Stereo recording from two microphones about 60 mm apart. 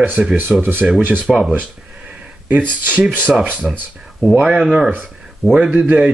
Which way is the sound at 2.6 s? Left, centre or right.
Right.